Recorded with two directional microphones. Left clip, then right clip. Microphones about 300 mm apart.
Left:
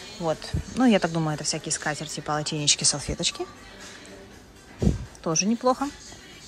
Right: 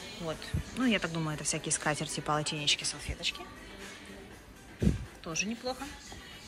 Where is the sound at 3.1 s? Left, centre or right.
Left.